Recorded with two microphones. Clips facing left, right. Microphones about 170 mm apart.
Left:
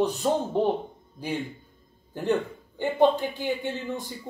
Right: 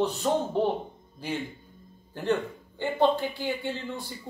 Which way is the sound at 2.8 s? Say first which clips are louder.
Left 3 dB; 15° left (ahead or behind).